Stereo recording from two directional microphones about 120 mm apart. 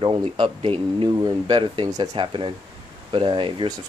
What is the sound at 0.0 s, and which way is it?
Speech, 45° right (ahead or behind).